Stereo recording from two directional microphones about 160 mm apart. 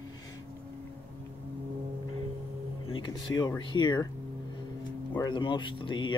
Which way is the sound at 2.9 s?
30° left (ahead or behind).